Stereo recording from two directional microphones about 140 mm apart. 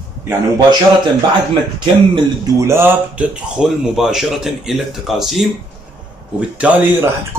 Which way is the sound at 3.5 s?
5° right (ahead or behind).